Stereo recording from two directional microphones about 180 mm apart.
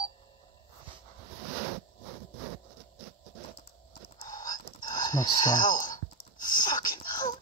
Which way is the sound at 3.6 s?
35° left (ahead or behind).